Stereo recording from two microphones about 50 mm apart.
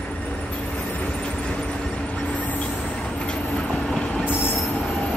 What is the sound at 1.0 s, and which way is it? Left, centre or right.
Vehicle, left.